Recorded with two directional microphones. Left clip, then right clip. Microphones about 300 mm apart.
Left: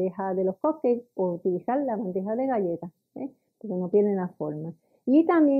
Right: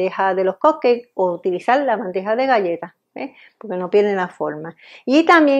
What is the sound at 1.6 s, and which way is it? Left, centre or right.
A woman's voice, centre.